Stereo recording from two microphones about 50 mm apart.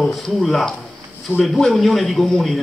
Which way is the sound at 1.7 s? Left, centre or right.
Centre.